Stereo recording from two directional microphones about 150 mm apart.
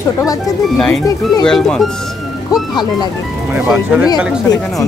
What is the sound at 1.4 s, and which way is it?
Speech, 5° left (ahead or behind).